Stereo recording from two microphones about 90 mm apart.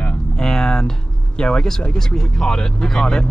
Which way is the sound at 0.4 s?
10° left (ahead or behind).